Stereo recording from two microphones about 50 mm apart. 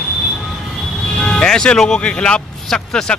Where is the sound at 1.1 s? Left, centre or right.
Left.